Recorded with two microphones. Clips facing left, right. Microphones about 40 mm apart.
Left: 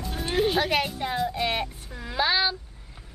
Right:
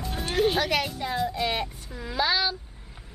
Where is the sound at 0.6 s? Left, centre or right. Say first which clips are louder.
Left 1 dB; centre.